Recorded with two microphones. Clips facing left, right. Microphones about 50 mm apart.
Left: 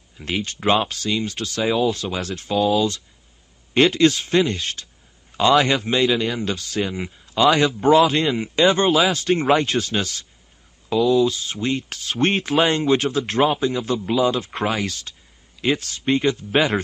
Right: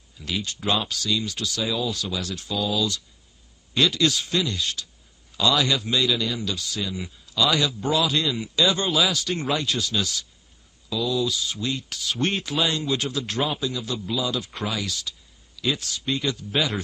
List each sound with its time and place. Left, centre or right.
0.2 s speech: left